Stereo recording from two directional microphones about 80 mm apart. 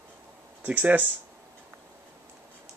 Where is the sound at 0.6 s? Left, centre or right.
Centre.